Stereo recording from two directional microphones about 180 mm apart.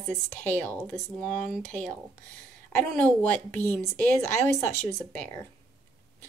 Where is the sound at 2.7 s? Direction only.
10° left (ahead or behind).